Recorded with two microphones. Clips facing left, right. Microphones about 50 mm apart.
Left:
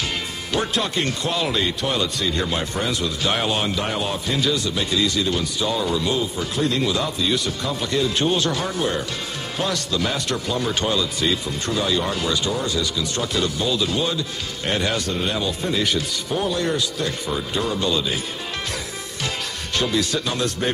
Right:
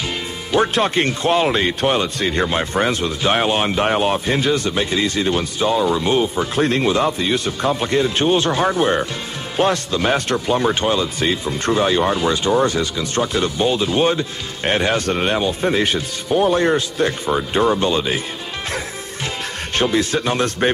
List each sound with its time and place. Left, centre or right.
0.6 s speech: right
15.0 s speech: right
19.7 s speech: right